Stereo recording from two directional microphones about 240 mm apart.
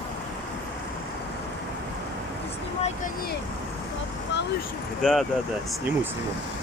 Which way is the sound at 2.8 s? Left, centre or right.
Left.